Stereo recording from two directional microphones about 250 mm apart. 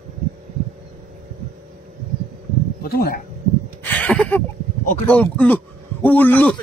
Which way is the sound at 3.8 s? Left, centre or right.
Centre.